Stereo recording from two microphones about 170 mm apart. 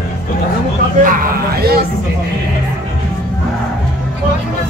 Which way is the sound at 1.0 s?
60° right (ahead or behind).